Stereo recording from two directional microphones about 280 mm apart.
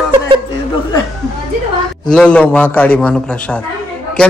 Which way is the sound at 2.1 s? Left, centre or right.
Centre.